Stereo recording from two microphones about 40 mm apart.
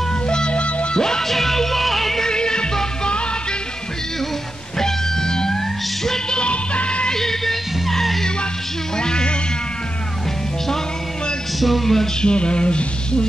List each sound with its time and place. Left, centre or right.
0.3 s music: left
0.9 s music: centre
2.2 s music: centre
4.7 s music: centre
6.3 s music: left
7.2 s music: centre
8.9 s music: centre
11.6 s a sound: centre
12.2 s a sound: left